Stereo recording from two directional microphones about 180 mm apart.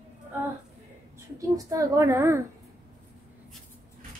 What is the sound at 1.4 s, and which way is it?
A woman's voice, 20° right (ahead or behind).